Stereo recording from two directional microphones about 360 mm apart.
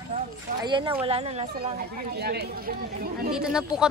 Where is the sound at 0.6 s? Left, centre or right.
Centre.